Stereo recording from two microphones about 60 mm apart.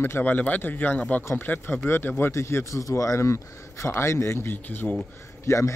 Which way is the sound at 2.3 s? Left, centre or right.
Left.